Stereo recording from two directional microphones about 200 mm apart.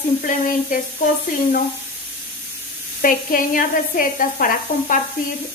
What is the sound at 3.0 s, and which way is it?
Speech, 45° left (ahead or behind).